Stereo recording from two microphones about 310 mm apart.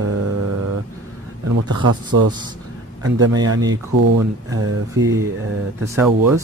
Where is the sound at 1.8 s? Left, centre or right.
Right.